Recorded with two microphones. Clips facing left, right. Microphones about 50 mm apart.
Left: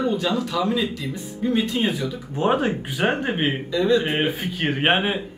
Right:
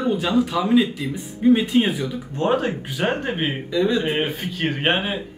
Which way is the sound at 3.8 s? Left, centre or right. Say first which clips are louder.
Even; centre.